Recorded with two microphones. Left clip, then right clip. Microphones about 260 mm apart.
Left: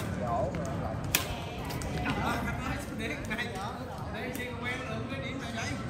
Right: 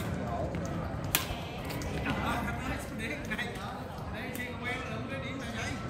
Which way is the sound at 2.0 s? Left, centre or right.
Centre.